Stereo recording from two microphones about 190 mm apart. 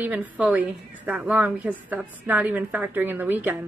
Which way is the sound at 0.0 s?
10° right (ahead or behind).